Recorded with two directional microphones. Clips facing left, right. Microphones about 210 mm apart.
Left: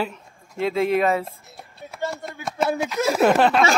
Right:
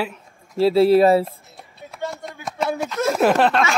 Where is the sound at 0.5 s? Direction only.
35° right (ahead or behind).